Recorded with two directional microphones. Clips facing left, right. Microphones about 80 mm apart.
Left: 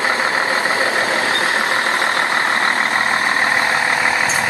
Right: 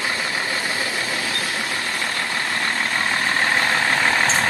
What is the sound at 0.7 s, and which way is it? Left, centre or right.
Vehicle, left.